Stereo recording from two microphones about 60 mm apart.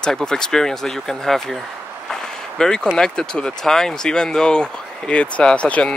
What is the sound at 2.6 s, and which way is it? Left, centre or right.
Speech, centre.